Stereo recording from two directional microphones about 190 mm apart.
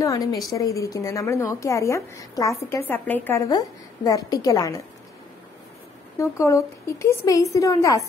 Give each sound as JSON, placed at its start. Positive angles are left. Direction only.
{"t": 0.0, "sound": "speech", "side_deg": 20}
{"t": 6.1, "sound": "speech", "side_deg": 15}